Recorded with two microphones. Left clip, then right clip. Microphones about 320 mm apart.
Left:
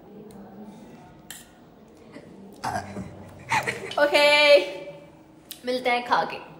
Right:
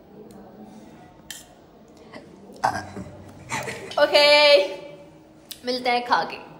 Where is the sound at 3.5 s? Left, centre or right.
Left.